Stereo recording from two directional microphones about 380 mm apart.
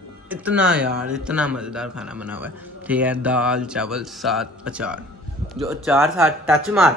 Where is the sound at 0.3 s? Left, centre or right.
Centre.